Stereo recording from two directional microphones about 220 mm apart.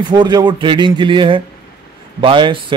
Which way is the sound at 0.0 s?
20° right (ahead or behind).